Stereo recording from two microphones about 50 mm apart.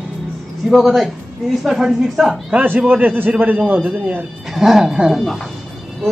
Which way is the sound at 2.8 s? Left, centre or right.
Right.